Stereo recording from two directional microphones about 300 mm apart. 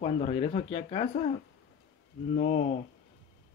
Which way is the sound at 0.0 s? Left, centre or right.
Left.